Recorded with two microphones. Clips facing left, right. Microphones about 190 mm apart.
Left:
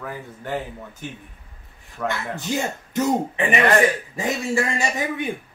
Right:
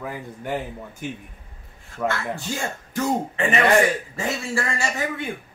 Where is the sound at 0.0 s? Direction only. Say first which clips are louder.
Right 1 dB; 15° right (ahead or behind).